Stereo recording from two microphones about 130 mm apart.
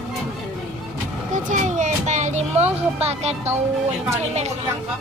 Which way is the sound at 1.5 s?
70° right (ahead or behind).